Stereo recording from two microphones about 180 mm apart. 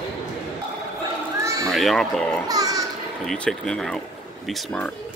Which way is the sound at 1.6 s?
Centre (ahead or behind).